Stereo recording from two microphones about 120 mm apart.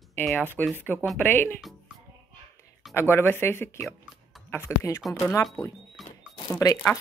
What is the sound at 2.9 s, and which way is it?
Speech, 20° left (ahead or behind).